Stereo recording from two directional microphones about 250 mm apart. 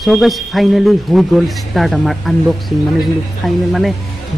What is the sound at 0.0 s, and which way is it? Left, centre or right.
Speech, centre.